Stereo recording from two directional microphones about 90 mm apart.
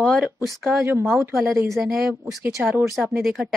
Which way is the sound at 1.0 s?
Centre (ahead or behind).